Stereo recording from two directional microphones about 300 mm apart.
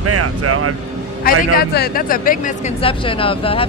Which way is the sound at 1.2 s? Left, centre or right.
Left.